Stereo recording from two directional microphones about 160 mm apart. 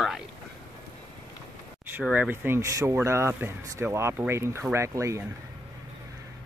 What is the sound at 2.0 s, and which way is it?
Speech, 10° right (ahead or behind).